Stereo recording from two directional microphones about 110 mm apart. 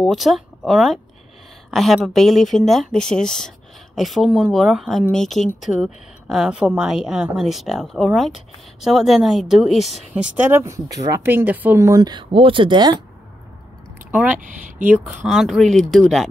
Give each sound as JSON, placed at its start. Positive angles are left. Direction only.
{"t": 0.0, "sound": "a woman's voice", "side_deg": 0}
{"t": 11.2, "sound": "speech", "side_deg": -15}
{"t": 11.8, "sound": "speech", "side_deg": -35}
{"t": 14.1, "sound": "speech", "side_deg": -15}
{"t": 15.2, "sound": "speech", "side_deg": 0}